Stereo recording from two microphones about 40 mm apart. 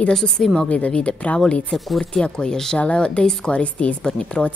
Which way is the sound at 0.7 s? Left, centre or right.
Left.